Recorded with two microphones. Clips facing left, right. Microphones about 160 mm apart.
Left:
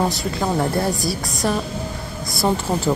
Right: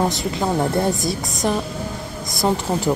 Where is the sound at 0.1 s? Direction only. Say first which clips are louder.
Right 1 dB; 20° right (ahead or behind).